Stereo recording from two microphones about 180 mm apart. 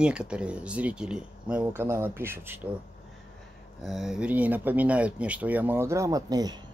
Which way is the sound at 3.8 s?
Centre (ahead or behind).